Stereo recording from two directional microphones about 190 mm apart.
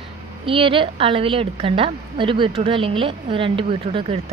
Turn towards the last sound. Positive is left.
turn(degrees=-30)  # may be behind; listen again after turning